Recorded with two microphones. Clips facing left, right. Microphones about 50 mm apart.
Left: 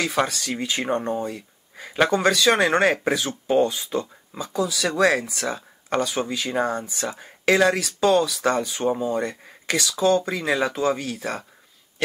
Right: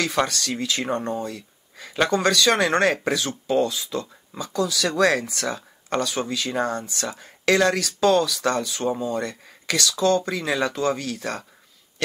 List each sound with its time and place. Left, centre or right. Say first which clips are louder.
0.0 s speech: even; centre; by 4.1 s left
4.3 s speech: right 2 dB; centre